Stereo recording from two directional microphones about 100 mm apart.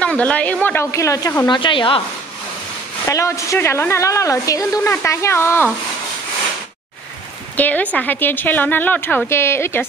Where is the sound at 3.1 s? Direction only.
30° left (ahead or behind).